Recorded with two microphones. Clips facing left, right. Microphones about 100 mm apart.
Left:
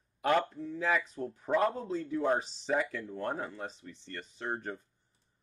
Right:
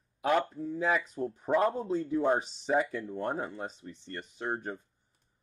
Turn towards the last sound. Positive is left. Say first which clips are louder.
# right 2 dB
turn(degrees=-15)  # may be behind; listen again after turning